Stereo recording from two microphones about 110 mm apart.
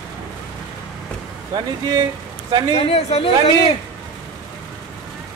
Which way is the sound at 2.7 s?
60° left (ahead or behind).